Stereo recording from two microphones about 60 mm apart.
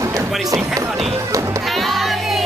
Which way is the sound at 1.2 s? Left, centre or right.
Right.